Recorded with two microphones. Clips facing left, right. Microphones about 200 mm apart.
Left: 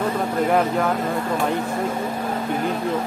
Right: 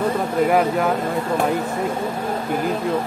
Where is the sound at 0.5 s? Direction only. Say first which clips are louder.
Even; 5° right (ahead or behind).